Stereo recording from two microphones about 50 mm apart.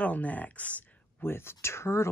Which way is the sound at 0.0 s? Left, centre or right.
Left.